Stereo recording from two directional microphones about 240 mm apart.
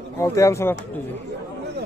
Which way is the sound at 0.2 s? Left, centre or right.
Centre.